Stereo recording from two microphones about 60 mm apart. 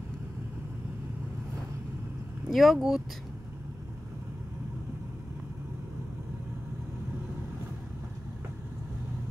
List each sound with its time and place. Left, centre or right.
2.5 s speech: centre